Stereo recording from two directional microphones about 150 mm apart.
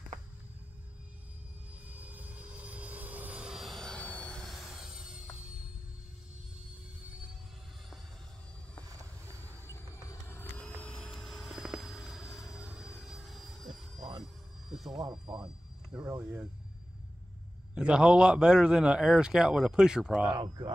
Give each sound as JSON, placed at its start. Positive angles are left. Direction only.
{"t": 1.9, "sound": "vehicle", "side_deg": -10}
{"t": 9.7, "sound": "a sound", "side_deg": 15}
{"t": 15.0, "sound": "speech", "side_deg": -30}
{"t": 16.1, "sound": "speech", "side_deg": -15}
{"t": 17.7, "sound": "a man's voice", "side_deg": -5}
{"t": 20.3, "sound": "speech", "side_deg": -30}